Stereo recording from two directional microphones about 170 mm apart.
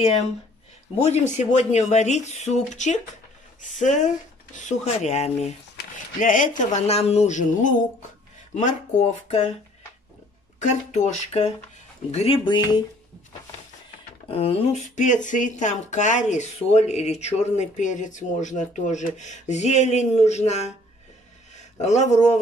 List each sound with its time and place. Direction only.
0.0 s speech: 40° left (ahead or behind)
10.6 s speech: 45° left (ahead or behind)
12.4 s speech: 25° left (ahead or behind)
14.3 s speech: 35° left (ahead or behind)
21.8 s speech: 45° left (ahead or behind)